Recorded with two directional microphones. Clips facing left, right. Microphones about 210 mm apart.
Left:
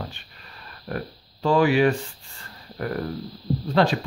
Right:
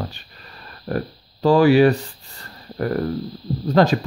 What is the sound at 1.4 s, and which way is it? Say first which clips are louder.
Speech: right 5 dB; 35° right (ahead or behind).